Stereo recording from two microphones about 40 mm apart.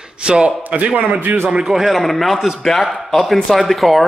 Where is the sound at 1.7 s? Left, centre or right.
Centre.